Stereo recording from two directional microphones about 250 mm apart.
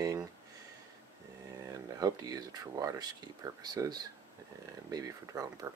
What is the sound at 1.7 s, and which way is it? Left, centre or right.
Speech, centre.